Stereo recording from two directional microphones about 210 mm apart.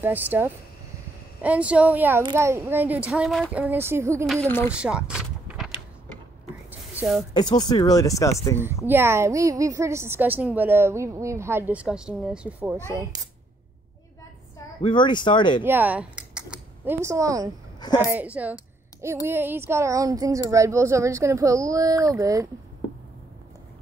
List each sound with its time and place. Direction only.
0.0 s a woman's voice: 10° right (ahead or behind)
4.3 s speech: 5° left (ahead or behind)
4.7 s vehicle: 5° right (ahead or behind)
6.7 s a sound: 10° right (ahead or behind)
7.3 s speech: 20° left (ahead or behind)
8.8 s a woman's voice: 10° right (ahead or behind)
12.9 s a woman's voice: 15° right (ahead or behind)
14.8 s speech: 20° left (ahead or behind)
15.6 s a woman's voice: 10° right (ahead or behind)
17.7 s a sound: 20° left (ahead or behind)
18.1 s a woman's voice: 5° right (ahead or behind)